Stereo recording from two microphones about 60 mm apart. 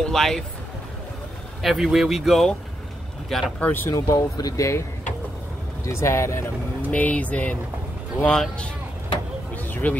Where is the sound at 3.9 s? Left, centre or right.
Left.